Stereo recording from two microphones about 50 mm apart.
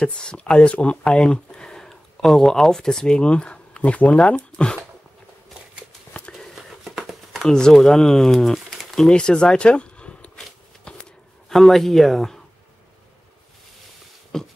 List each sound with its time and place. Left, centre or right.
0.0 s speech: centre
7.0 s shuffling cards: centre
7.4 s speech: centre
9.1 s speech: centre
10.9 s a sound: centre
11.5 s speech: centre
14.3 s beatboxing: centre